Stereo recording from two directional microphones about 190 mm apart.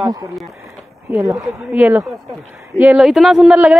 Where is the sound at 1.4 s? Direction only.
10° right (ahead or behind).